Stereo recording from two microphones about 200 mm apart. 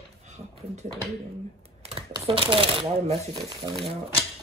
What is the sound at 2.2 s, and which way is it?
Speech, 25° right (ahead or behind).